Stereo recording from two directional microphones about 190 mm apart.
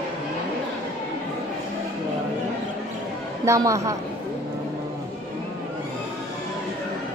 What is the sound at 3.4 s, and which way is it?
Speech, 15° right (ahead or behind).